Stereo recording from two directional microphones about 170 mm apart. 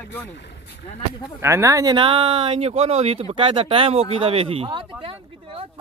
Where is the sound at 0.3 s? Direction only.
90° left.